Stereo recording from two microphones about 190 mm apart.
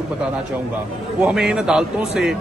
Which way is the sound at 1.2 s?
5° right (ahead or behind).